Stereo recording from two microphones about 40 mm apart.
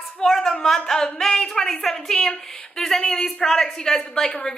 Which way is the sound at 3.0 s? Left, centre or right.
Left.